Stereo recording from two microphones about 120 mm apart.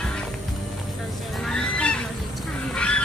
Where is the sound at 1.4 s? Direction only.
10° left (ahead or behind).